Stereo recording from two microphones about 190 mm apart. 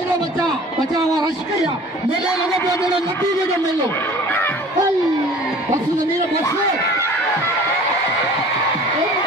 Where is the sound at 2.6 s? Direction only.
15° left (ahead or behind).